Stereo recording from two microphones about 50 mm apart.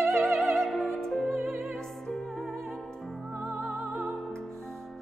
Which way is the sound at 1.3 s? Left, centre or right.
Right.